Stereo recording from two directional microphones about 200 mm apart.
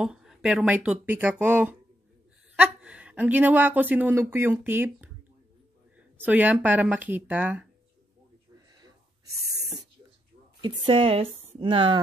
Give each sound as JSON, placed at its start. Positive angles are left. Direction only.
{"t": 0.0, "sound": "a woman's voice", "side_deg": -5}
{"t": 8.5, "sound": "a sound", "side_deg": -20}
{"t": 10.6, "sound": "speech", "side_deg": -30}